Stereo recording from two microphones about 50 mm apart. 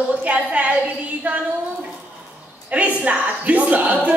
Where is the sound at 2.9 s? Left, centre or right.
Right.